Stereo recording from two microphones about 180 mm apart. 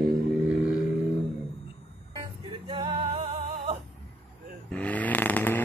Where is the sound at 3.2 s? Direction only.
40° right (ahead or behind).